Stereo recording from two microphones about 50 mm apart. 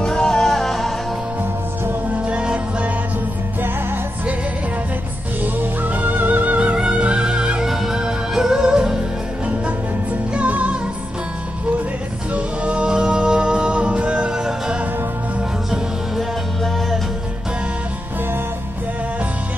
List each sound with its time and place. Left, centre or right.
0.0 s music: centre
2.1 s music: right
5.4 s music: right; by 7.6 s centre
7.6 s music: centre
10.3 s music: right
12.4 s music: right